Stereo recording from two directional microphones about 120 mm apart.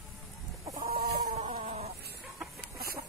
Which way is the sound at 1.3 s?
65° right (ahead or behind).